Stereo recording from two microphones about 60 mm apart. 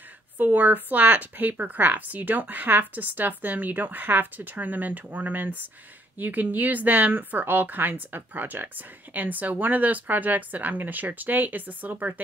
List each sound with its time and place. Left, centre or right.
0.4 s speech: right